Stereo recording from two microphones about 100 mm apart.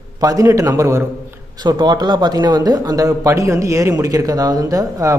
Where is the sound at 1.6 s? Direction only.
45° right (ahead or behind).